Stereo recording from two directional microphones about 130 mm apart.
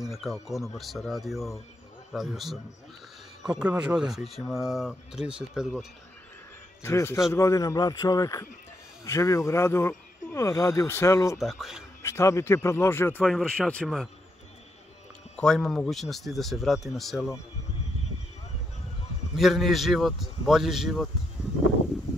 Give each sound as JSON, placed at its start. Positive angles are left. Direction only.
{"t": 0.0, "sound": "speech", "side_deg": 0}
{"t": 6.8, "sound": "speech", "side_deg": 20}
{"t": 11.3, "sound": "speech", "side_deg": 0}
{"t": 12.0, "sound": "speech", "side_deg": 20}
{"t": 13.2, "sound": "speech", "side_deg": 0}
{"t": 15.3, "sound": "speech", "side_deg": 5}
{"t": 19.3, "sound": "speech", "side_deg": 0}